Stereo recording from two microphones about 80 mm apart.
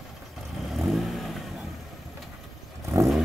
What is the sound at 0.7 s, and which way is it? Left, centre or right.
Vehicle, centre.